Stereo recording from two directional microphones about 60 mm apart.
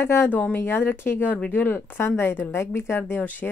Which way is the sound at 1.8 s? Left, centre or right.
Left.